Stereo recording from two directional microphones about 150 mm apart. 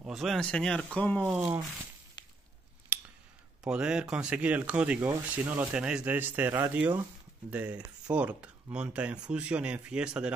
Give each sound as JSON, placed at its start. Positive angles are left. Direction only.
{"t": 0.1, "sound": "speech", "side_deg": 0}
{"t": 1.2, "sound": "speech", "side_deg": -10}
{"t": 2.9, "sound": "a sound", "side_deg": -10}
{"t": 3.6, "sound": "speech", "side_deg": -5}